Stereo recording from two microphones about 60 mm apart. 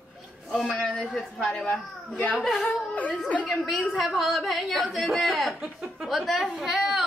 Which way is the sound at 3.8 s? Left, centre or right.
Centre.